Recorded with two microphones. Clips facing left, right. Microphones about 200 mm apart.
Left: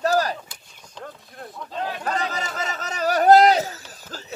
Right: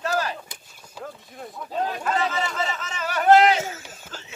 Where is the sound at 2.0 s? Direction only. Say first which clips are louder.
Right 2 dB; 40° left (ahead or behind).